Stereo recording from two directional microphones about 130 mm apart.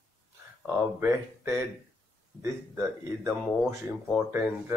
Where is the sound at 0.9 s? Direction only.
20° right (ahead or behind).